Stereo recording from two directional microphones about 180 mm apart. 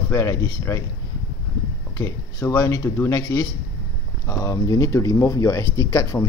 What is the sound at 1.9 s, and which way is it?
Speech, 15° left (ahead or behind).